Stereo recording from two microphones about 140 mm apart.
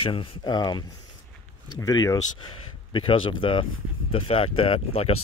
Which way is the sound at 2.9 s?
35° left (ahead or behind).